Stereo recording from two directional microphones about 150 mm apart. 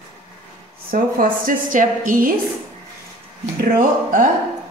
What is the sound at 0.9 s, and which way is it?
A woman's voice, 70° right (ahead or behind).